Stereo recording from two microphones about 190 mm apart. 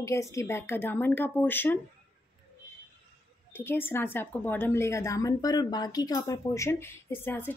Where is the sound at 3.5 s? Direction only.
10° left (ahead or behind).